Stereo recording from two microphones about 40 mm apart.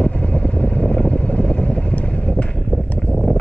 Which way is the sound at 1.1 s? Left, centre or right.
Left.